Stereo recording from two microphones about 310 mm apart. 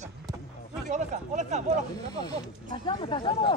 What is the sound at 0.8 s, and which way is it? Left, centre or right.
Speech, right.